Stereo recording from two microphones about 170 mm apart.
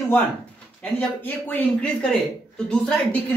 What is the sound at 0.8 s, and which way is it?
Speech, 10° left (ahead or behind).